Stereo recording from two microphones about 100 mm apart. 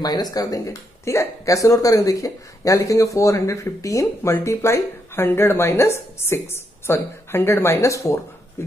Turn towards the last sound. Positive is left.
turn(degrees=30)  # may be behind; listen again after turning